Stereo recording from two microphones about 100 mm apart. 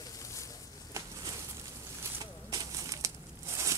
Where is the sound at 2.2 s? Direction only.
35° right (ahead or behind).